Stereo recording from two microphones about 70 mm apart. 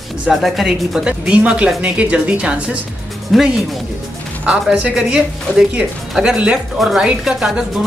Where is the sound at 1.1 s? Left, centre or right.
Centre.